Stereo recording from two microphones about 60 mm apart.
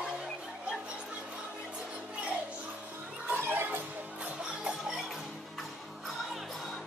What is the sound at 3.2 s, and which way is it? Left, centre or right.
Music, right.